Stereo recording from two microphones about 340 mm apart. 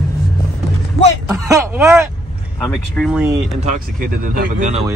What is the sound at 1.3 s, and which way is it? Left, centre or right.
Speech, centre.